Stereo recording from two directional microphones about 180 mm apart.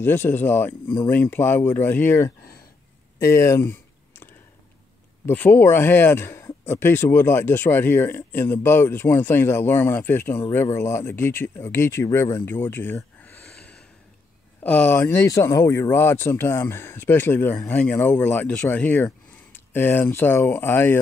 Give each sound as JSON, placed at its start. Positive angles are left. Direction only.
{"t": 0.0, "sound": "speech", "side_deg": 10}
{"t": 5.2, "sound": "speech", "side_deg": 10}